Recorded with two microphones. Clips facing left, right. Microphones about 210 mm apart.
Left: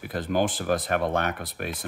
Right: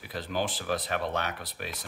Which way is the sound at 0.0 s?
50° left (ahead or behind).